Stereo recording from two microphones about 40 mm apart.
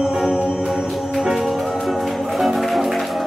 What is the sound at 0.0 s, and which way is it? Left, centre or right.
Music, right.